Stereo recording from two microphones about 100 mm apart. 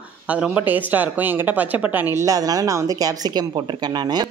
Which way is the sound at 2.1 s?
35° right (ahead or behind).